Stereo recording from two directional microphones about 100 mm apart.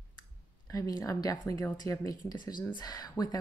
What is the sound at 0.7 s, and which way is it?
A woman's voice, 35° left (ahead or behind).